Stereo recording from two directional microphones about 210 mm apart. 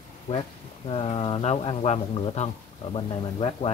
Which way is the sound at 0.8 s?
25° left (ahead or behind).